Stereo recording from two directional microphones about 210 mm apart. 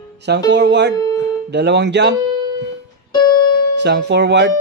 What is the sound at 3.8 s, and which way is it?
Speech, 55° right (ahead or behind).